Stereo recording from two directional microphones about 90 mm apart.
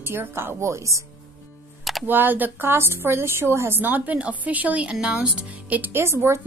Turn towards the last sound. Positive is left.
turn(degrees=-30)  # may be behind; listen again after turning